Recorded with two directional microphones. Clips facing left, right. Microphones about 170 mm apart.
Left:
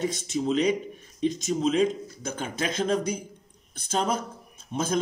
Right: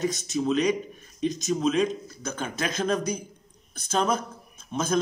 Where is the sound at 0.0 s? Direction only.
30° left (ahead or behind).